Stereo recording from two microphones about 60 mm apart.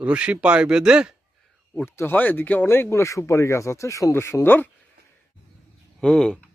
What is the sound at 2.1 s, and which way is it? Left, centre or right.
Speech, left.